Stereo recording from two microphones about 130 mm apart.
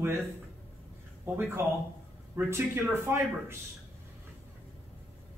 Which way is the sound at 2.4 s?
20° right (ahead or behind).